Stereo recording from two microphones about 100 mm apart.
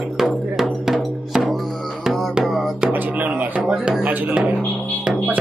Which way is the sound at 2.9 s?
15° right (ahead or behind).